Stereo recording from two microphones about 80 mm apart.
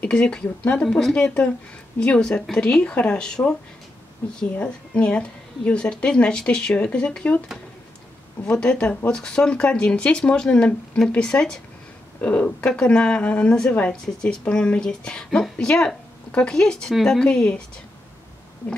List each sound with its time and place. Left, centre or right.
0.0 s speech: centre
4.2 s speech: left
4.6 s speech: centre
8.5 s speech: centre